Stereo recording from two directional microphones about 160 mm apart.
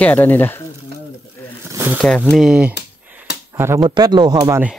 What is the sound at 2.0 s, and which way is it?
Speech, 5° left (ahead or behind).